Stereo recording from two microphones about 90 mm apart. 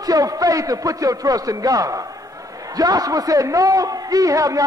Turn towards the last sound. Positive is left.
turn(degrees=-40)  # may be behind; listen again after turning